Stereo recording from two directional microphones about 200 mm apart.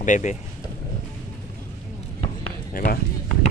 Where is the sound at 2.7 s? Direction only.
45° left (ahead or behind).